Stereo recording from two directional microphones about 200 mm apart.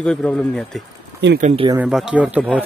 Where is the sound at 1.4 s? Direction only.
30° right (ahead or behind).